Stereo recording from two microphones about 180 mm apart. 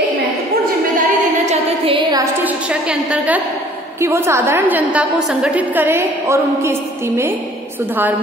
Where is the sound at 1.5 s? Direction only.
30° right (ahead or behind).